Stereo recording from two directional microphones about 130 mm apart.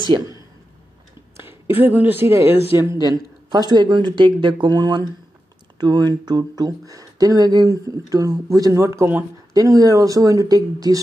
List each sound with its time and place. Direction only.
1.4 s speech: 15° right (ahead or behind)
3.1 s speech: 30° right (ahead or behind)